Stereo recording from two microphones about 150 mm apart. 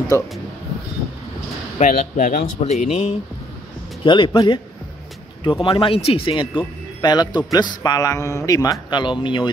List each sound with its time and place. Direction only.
0.1 s speech: 20° left (ahead or behind)
1.8 s speech: 55° left (ahead or behind)
2.6 s speech: 45° left (ahead or behind)
4.0 s a man's voice: 35° left (ahead or behind)